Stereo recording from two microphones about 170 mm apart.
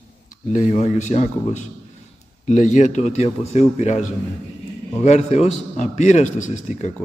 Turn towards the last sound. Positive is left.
turn(degrees=45)  # may be behind; listen again after turning